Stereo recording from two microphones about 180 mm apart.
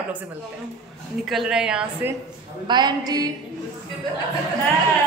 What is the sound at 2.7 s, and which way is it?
Speech, 25° right (ahead or behind).